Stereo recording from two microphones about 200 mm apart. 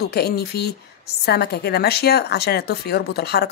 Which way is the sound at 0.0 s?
50° left (ahead or behind).